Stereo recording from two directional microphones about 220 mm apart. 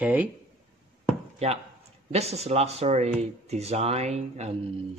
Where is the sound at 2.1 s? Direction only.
30° right (ahead or behind).